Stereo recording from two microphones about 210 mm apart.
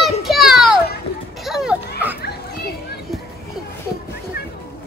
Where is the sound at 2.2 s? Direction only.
50° left (ahead or behind).